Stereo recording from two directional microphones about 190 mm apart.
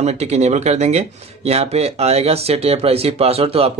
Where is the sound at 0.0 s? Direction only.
35° right (ahead or behind).